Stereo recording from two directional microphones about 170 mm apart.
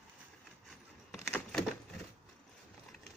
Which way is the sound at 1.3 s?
5° left (ahead or behind).